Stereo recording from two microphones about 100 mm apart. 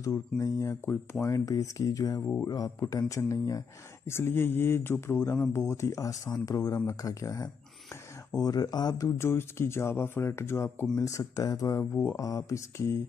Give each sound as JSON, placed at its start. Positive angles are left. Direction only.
{"t": 0.0, "sound": "speech", "side_deg": 35}
{"t": 4.1, "sound": "speech", "side_deg": 25}
{"t": 9.3, "sound": "speech", "side_deg": 25}